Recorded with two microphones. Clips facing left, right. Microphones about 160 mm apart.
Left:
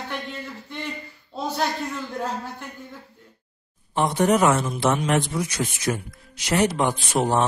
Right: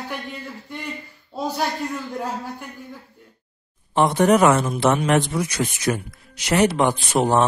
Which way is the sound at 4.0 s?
70° right (ahead or behind).